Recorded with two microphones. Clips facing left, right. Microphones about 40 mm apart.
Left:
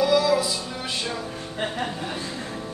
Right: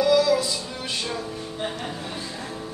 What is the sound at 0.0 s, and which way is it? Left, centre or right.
Music, centre.